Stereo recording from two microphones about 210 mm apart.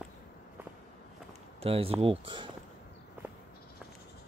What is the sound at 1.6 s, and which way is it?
Speech, 25° right (ahead or behind).